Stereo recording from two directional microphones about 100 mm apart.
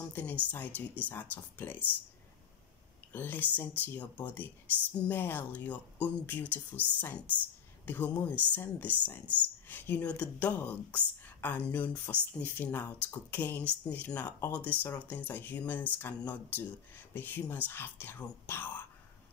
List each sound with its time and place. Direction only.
0.1 s speech: 15° left (ahead or behind)
3.1 s speech: 20° left (ahead or behind)